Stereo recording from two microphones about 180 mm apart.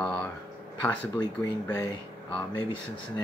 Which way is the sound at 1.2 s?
25° left (ahead or behind).